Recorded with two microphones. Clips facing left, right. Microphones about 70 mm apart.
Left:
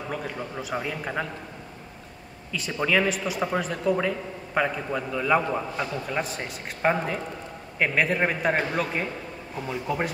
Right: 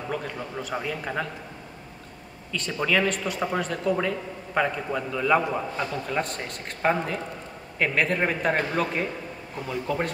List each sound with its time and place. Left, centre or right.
0.1 s speech: centre
2.5 s a man's voice: centre